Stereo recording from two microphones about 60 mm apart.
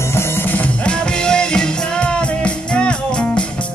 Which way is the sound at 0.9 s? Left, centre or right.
Centre.